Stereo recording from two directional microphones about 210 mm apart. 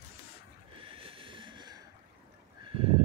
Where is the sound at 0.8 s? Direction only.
25° right (ahead or behind).